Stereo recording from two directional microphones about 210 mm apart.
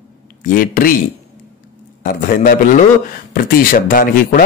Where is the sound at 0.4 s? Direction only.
40° left (ahead or behind).